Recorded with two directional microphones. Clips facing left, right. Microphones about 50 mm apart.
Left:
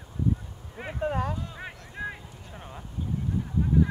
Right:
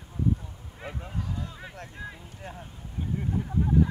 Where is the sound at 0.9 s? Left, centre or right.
Left.